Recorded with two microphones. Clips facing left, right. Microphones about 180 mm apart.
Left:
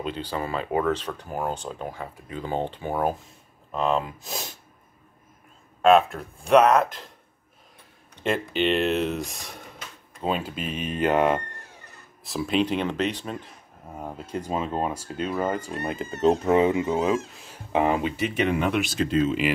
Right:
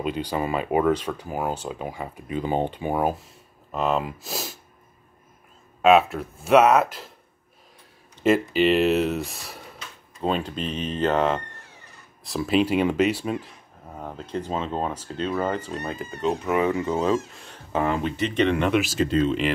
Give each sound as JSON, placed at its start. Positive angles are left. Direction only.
{"t": 0.0, "sound": "speech", "side_deg": -10}
{"t": 5.8, "sound": "speech", "side_deg": -5}
{"t": 8.2, "sound": "speech", "side_deg": -5}
{"t": 12.2, "sound": "speech", "side_deg": 0}
{"t": 13.8, "sound": "speech", "side_deg": 10}
{"t": 16.2, "sound": "speech", "side_deg": 35}
{"t": 16.6, "sound": "speech", "side_deg": 15}